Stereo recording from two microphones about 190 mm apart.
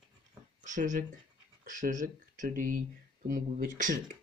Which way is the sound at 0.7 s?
40° right (ahead or behind).